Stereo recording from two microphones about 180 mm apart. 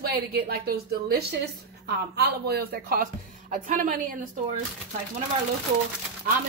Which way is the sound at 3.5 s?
45° right (ahead or behind).